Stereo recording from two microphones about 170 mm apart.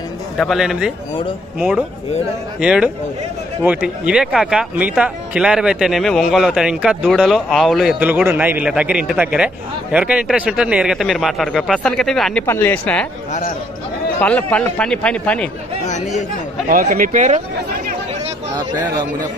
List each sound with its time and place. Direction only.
0.4 s speech: centre (ahead or behind)
12.4 s a man's voice: 15° left (ahead or behind)
14.2 s a man's voice: 10° left (ahead or behind)
15.9 s speech: 45° left (ahead or behind)
16.6 s speech: 55° right (ahead or behind)